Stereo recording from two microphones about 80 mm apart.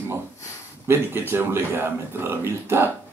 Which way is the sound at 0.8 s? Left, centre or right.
Right.